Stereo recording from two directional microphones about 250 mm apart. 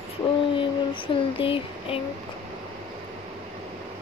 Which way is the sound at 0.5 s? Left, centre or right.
Left.